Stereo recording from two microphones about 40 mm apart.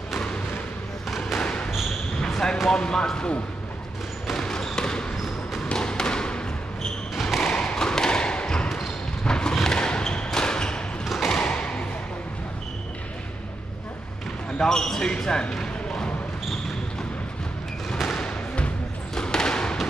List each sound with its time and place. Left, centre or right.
1.4 s basketball bounce: left
2.7 s speech: centre
4.3 s basketball bounce: centre
7.2 s a sound: centre
7.4 s thump: centre
8.6 s basketball bounce: centre
9.2 s a sound: left
11.1 s a sound: centre
11.4 s thump: left
14.6 s speech: centre
15.5 s basketball bounce: centre
18.1 s thump: left
19.1 s a sound: centre